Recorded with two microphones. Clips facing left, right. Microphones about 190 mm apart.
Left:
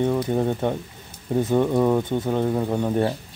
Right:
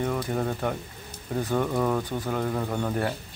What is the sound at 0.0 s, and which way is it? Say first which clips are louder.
Speech: left 6 dB; 25° left (ahead or behind).